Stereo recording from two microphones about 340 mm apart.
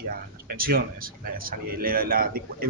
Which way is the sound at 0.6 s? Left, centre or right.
Right.